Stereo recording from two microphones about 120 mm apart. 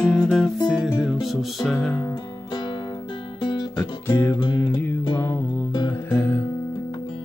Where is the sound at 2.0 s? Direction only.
35° left (ahead or behind).